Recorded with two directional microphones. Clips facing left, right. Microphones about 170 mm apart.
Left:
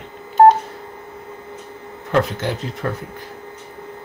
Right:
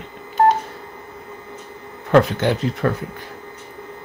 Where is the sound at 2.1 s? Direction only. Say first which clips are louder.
Right 4 dB; 75° right (ahead or behind).